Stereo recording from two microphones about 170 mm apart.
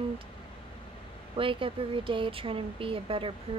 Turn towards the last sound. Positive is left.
turn(degrees=-30)  # may be behind; listen again after turning